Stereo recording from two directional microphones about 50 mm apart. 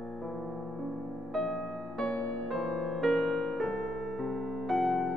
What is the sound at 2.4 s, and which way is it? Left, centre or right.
Music, centre.